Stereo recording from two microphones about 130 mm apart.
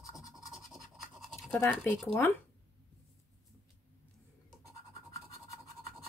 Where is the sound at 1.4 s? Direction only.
15° left (ahead or behind).